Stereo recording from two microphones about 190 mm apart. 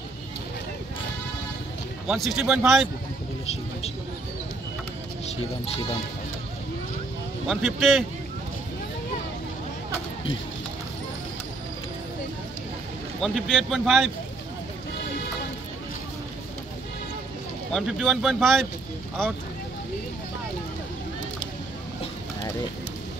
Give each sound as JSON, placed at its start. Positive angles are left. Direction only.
{"t": 2.0, "sound": "speech", "side_deg": 0}
{"t": 5.2, "sound": "speech", "side_deg": 30}
{"t": 7.4, "sound": "speech", "side_deg": 0}
{"t": 13.2, "sound": "speech", "side_deg": 0}
{"t": 17.7, "sound": "speech", "side_deg": 0}